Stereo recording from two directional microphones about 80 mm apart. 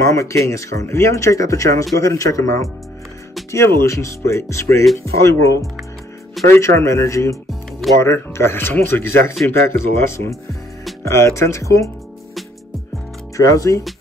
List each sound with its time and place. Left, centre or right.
0.1 s speech: left
13.4 s speech: left